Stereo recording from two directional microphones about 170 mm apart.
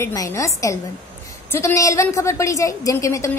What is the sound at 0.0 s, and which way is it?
A woman's voice, 20° left (ahead or behind).